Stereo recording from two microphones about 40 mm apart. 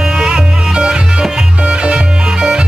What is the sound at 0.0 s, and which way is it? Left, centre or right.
Music, centre.